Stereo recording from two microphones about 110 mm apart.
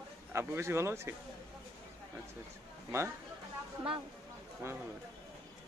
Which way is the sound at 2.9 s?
20° right (ahead or behind).